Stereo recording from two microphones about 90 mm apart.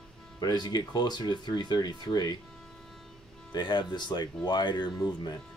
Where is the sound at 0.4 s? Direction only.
50° left (ahead or behind).